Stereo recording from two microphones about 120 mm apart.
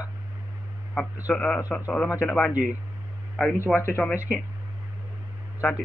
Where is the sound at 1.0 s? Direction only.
15° left (ahead or behind).